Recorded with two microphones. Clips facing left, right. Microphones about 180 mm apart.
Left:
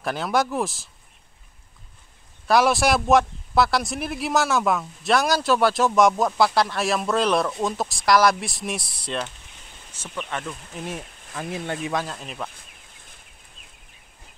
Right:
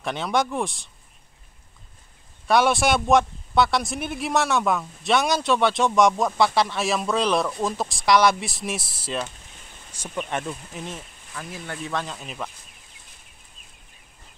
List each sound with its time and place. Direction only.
0.0 s a man's voice: centre (ahead or behind)
2.4 s a man's voice: centre (ahead or behind)
9.9 s speech: 15° right (ahead or behind)
10.8 s a man's voice: centre (ahead or behind)
11.5 s speech: 25° left (ahead or behind)
11.9 s a man's voice: 5° left (ahead or behind)